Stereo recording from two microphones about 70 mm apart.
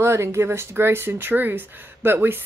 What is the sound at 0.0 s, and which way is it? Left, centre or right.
Speech, right.